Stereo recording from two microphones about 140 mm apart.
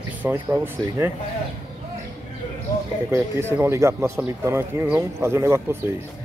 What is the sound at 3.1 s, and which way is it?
A man's voice, 20° right (ahead or behind).